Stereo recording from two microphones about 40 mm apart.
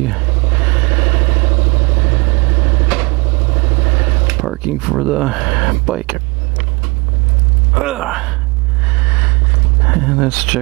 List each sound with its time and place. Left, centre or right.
0.0 s vehicle: centre
4.6 s speech: centre
7.7 s speech: centre
9.0 s a sound: right